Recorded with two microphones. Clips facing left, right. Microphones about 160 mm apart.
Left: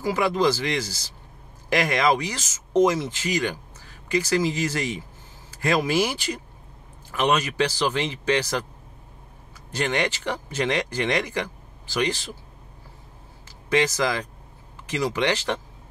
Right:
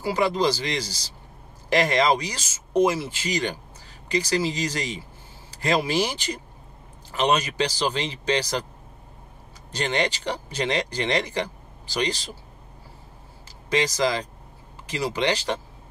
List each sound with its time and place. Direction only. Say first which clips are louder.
0.0 s speech: left 1 dB; 20° right (ahead or behind)
9.7 s speech: even; 20° right (ahead or behind)
13.7 s speech: left 1 dB; 15° right (ahead or behind)